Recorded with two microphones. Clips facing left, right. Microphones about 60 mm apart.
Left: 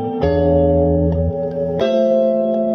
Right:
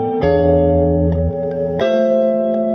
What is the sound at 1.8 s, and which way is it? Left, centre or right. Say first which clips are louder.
Music: even; right.